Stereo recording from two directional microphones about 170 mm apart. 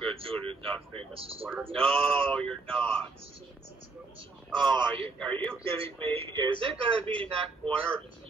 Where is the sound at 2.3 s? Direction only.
5° left (ahead or behind).